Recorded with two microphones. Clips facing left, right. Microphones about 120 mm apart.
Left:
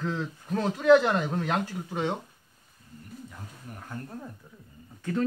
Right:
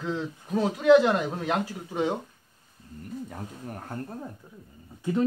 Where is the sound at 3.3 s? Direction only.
45° right (ahead or behind).